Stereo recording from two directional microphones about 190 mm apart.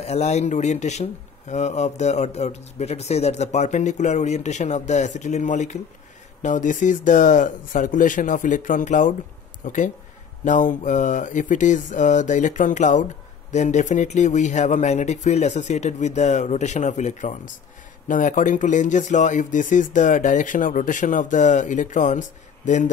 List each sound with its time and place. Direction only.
0.0 s speech: 35° left (ahead or behind)